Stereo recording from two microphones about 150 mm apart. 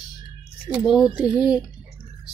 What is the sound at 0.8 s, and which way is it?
Speech, 5° right (ahead or behind).